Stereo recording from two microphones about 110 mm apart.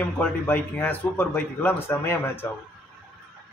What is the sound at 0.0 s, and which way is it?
Speech, 15° left (ahead or behind).